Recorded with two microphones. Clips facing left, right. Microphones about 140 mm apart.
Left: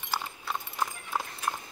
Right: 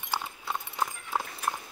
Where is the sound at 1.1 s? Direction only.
5° right (ahead or behind).